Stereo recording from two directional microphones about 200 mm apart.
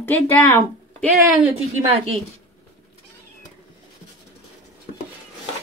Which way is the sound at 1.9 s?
30° right (ahead or behind).